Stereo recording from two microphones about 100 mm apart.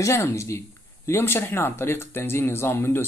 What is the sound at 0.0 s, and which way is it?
Speech, 30° left (ahead or behind).